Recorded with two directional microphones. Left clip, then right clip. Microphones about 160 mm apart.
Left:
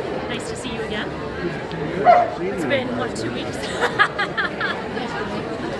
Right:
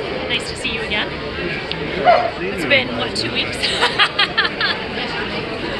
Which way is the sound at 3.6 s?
80° left.